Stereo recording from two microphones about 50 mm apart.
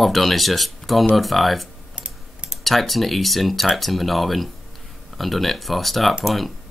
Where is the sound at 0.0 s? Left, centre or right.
Centre.